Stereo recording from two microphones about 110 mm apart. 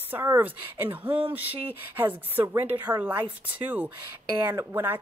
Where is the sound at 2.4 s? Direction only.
20° right (ahead or behind).